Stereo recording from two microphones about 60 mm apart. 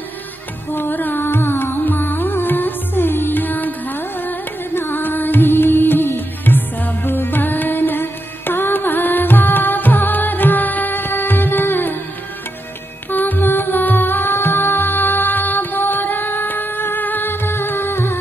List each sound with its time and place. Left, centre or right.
0.7 s music: left
13.1 s music: left